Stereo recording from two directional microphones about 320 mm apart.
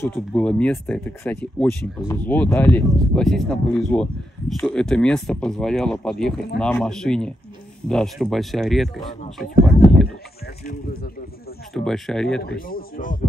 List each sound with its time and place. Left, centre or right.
0.0 s speech: centre
10.6 s speech: left
11.7 s speech: centre
12.4 s speech: left